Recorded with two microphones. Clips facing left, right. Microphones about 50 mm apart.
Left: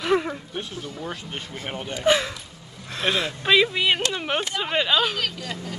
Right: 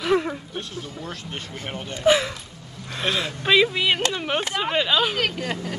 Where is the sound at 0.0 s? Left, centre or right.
Centre.